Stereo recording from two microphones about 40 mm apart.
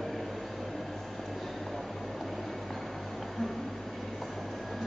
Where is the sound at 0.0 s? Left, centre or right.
Centre.